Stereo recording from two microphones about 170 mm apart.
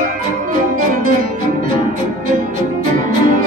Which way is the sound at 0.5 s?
50° right (ahead or behind).